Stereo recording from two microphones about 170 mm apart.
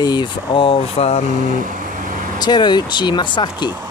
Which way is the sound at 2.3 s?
25° left (ahead or behind).